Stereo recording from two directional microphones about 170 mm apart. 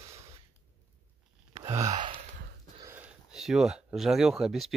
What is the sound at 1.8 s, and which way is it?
Gasp, 45° right (ahead or behind).